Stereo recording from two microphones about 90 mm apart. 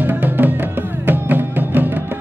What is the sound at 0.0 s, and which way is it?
Music, 20° right (ahead or behind).